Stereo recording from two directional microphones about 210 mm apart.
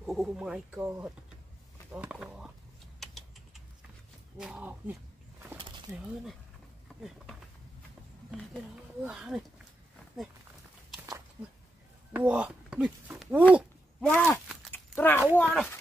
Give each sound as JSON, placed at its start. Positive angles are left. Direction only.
{"t": 0.0, "sound": "speech", "side_deg": 0}
{"t": 3.0, "sound": "typing", "side_deg": 0}
{"t": 4.4, "sound": "speech", "side_deg": -5}
{"t": 5.6, "sound": "a sound", "side_deg": -20}
{"t": 9.0, "sound": "speech", "side_deg": 0}
{"t": 12.1, "sound": "speech", "side_deg": -5}
{"t": 14.0, "sound": "speech", "side_deg": 10}
{"t": 14.7, "sound": "a sound", "side_deg": 10}
{"t": 15.4, "sound": "speech", "side_deg": 0}